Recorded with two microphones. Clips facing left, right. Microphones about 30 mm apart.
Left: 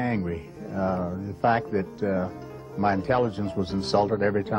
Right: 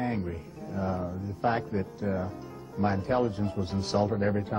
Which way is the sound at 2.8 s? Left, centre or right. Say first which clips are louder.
Left 4 dB; left.